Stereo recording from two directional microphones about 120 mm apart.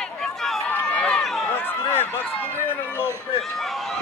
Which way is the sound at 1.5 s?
15° left (ahead or behind).